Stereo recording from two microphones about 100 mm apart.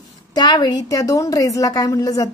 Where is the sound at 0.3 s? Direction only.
45° left (ahead or behind).